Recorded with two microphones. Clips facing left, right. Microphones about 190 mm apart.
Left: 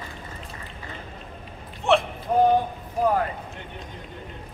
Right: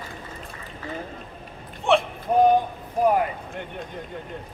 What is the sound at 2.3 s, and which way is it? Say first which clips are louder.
Clip-clop: right 1 dB; 15° right (ahead or behind).